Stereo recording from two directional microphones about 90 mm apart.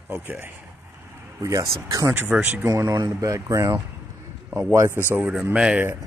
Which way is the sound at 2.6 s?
45° right (ahead or behind).